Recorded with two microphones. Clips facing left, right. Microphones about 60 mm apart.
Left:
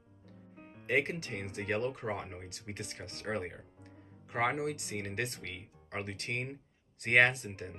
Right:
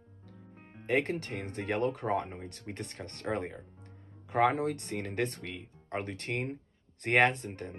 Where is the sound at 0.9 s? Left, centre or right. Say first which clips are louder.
Right 2 dB; centre.